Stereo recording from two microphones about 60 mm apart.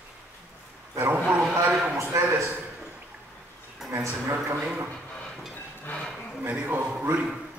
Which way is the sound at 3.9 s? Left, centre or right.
Right.